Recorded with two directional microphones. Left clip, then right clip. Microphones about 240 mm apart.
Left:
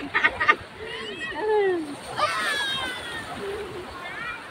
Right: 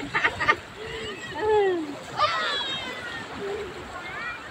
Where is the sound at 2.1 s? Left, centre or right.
Centre.